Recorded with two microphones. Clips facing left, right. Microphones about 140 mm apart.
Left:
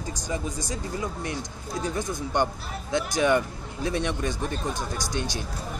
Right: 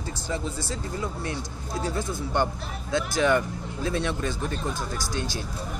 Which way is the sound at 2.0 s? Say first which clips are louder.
Left 1 dB; 20° left (ahead or behind).